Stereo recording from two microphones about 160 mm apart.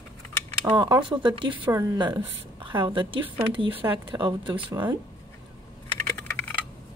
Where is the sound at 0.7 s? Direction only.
25° right (ahead or behind).